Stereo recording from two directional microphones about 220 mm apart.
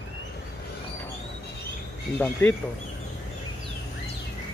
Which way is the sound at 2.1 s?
10° left (ahead or behind).